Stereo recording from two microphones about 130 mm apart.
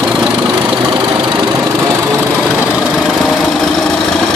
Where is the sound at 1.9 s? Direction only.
20° right (ahead or behind).